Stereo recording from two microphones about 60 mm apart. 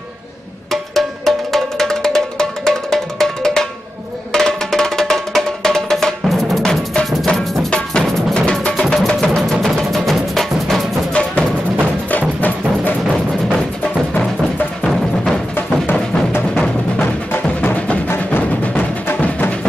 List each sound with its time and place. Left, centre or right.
0.7 s music: centre
12.1 s music: left
15.5 s music: left